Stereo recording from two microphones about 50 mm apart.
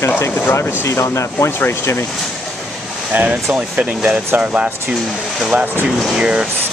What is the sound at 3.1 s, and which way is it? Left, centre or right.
Speech, right.